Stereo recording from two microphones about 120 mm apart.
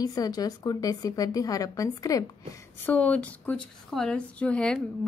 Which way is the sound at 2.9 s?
10° left (ahead or behind).